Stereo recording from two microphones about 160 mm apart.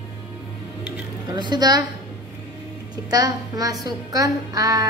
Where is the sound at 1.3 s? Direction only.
25° right (ahead or behind).